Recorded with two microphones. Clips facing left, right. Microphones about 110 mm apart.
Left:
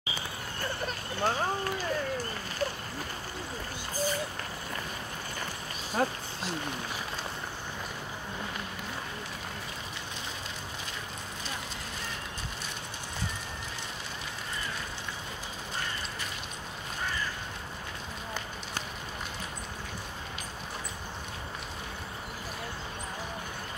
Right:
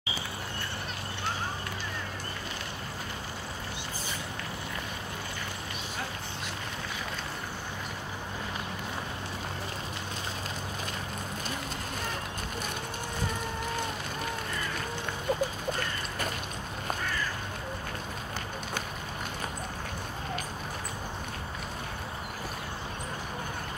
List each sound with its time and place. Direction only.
1.2 s speech: 45° left (ahead or behind)
6.0 s speech: 40° left (ahead or behind)